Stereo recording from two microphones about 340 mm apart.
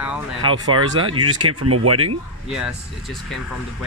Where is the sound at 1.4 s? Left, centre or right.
Right.